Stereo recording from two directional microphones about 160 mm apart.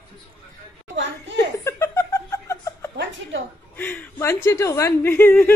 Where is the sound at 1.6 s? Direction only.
15° left (ahead or behind).